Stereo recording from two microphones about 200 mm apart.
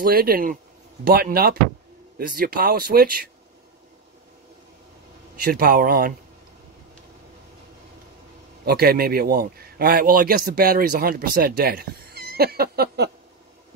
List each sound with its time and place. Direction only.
0.0 s a man's voice: 50° right (ahead or behind)
5.4 s a man's voice: 45° right (ahead or behind)
8.6 s a man's voice: 50° right (ahead or behind)